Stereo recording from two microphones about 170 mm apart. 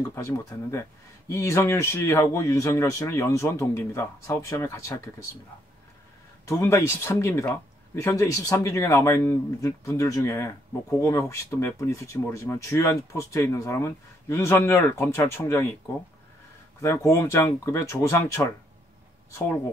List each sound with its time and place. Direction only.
0.1 s speech: 15° left (ahead or behind)
6.4 s speech: 15° left (ahead or behind)
16.8 s speech: 15° left (ahead or behind)